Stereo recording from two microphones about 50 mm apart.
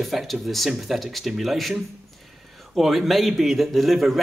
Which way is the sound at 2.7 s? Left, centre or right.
Centre.